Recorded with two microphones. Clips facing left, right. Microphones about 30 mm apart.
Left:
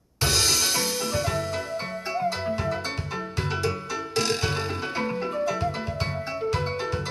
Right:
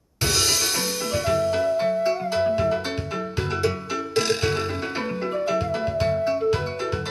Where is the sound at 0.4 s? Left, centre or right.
Right.